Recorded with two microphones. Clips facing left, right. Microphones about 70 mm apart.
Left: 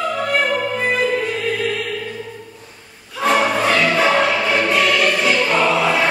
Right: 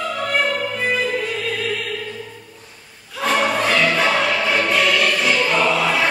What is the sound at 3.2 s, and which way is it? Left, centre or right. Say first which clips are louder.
Music: left 2 dB; centre.